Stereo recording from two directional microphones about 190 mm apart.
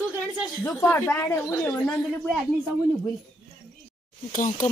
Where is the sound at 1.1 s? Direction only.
15° left (ahead or behind).